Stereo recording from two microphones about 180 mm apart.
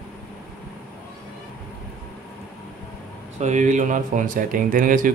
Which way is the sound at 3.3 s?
40° right (ahead or behind).